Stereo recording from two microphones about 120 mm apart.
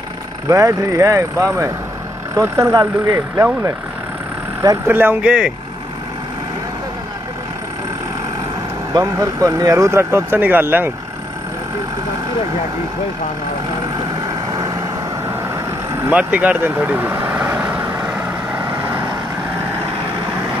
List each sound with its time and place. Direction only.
0.5 s speech: 25° right (ahead or behind)
3.3 s speech: 20° right (ahead or behind)
4.8 s speech: 15° right (ahead or behind)
8.9 s speech: 25° right (ahead or behind)
16.1 s speech: 10° right (ahead or behind)